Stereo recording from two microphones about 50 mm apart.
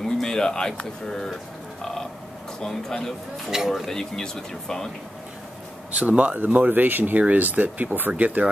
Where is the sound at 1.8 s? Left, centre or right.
Centre.